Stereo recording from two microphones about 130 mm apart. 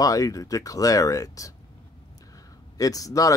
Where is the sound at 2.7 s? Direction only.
25° left (ahead or behind).